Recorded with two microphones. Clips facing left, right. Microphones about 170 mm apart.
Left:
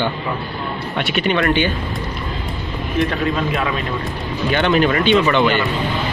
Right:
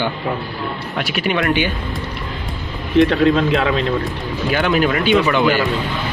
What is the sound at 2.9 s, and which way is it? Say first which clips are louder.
Speech: right 7 dB; 75° right (ahead or behind).